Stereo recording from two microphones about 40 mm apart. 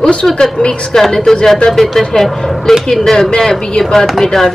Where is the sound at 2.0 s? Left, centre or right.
Centre.